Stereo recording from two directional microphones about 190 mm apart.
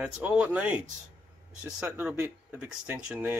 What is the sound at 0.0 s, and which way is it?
Speech, 5° right (ahead or behind).